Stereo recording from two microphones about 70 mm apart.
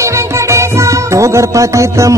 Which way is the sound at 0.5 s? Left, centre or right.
Right.